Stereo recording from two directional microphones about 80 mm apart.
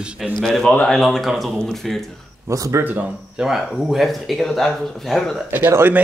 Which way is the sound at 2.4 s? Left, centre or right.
Right.